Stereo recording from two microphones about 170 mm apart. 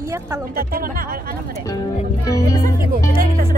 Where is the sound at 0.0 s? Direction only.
15° right (ahead or behind).